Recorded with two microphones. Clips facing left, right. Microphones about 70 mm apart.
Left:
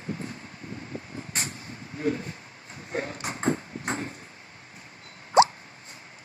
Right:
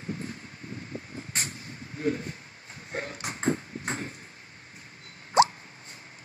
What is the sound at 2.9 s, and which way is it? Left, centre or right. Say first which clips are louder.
Ping: left 3 dB; left.